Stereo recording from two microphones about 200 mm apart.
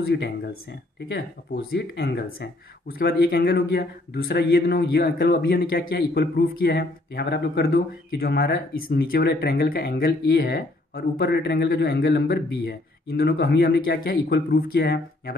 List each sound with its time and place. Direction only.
0.0 s speech: 55° left (ahead or behind)